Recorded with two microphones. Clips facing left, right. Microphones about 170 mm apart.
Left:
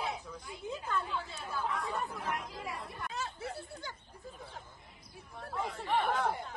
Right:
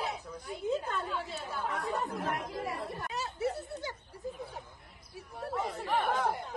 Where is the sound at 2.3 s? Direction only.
60° right (ahead or behind).